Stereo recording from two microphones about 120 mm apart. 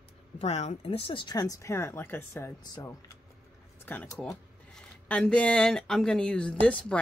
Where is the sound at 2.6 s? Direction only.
35° left (ahead or behind).